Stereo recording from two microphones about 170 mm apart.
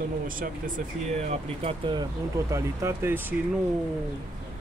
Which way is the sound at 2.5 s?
15° right (ahead or behind).